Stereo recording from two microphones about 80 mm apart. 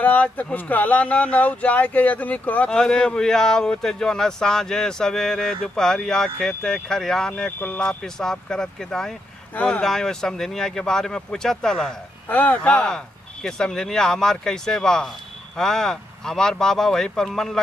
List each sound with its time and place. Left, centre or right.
0.0 s speech: centre
2.7 s speech: centre
7.5 s speech: left
8.0 s speech: centre
12.3 s speech: centre